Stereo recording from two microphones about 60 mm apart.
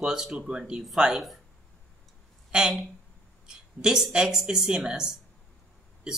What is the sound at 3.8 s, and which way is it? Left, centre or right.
Speech, centre.